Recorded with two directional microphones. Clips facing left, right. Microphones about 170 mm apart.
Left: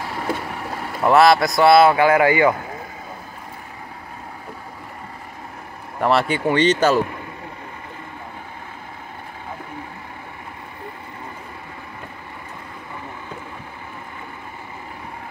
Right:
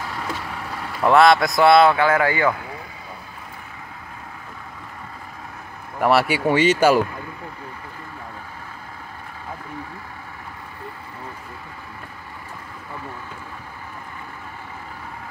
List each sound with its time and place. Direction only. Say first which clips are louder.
0.0 s boat: left 2 dB; 30° left (ahead or behind)
1.0 s speech: left 1 dB; 5° left (ahead or behind)
5.9 s speech: right 1 dB; 5° right (ahead or behind)